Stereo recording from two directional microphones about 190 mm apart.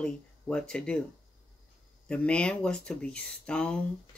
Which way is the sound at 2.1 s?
5° left (ahead or behind).